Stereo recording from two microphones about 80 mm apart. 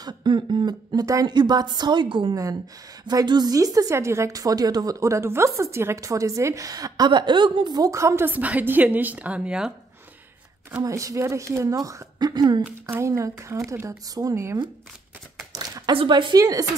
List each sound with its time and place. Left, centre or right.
0.0 s speech: right
1.2 s a woman's voice: right
3.1 s speech: right
3.9 s speech: right
7.1 s a woman's voice: right
7.9 s speech: right
8.3 s a woman's voice: centre
10.8 s speech: right
13.0 s speech: right
13.8 s speech: right
15.5 s a sound: right
15.9 s speech: right
16.3 s speech: right